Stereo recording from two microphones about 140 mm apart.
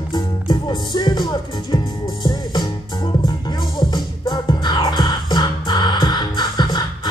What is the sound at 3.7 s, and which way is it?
Music, 30° left (ahead or behind).